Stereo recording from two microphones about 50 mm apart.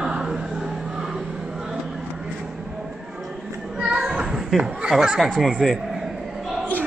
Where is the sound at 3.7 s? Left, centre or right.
Centre.